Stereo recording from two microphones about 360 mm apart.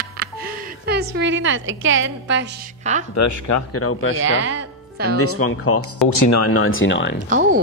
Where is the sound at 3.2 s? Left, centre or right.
Left.